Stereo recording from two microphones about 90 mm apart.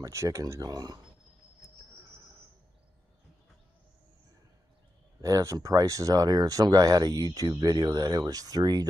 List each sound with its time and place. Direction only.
0.0 s speech: 35° right (ahead or behind)
5.2 s speech: 35° right (ahead or behind)